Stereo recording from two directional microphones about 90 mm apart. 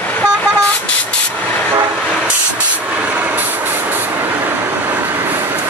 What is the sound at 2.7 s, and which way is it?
Vehicle, 15° right (ahead or behind).